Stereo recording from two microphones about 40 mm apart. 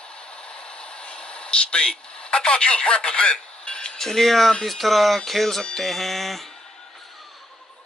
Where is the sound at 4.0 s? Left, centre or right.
Centre.